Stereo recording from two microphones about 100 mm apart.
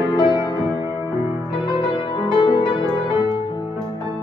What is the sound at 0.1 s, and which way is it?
Music, 50° left (ahead or behind).